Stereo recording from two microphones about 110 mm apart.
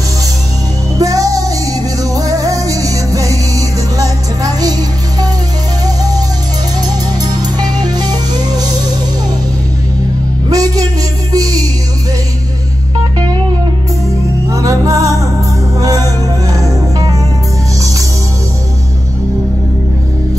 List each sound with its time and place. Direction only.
0.9 s music: 30° right (ahead or behind)
10.5 s music: 35° right (ahead or behind)
14.5 s music: 30° right (ahead or behind)